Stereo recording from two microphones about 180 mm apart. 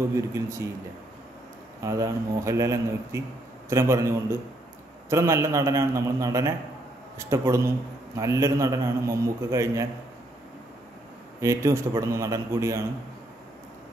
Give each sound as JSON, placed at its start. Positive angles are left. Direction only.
{"t": 0.1, "sound": "a man's voice", "side_deg": -15}
{"t": 1.8, "sound": "a man's voice", "side_deg": -20}
{"t": 11.4, "sound": "a man's voice", "side_deg": -15}